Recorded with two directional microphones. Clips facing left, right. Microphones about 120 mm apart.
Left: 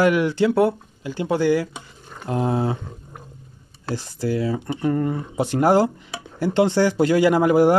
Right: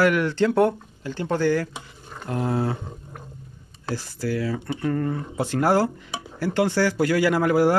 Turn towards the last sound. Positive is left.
turn(degrees=20)  # may be behind; listen again after turning